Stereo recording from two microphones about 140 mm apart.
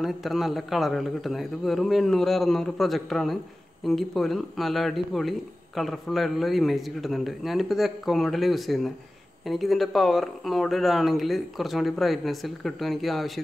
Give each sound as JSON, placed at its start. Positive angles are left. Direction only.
{"t": 0.0, "sound": "speech", "side_deg": 0}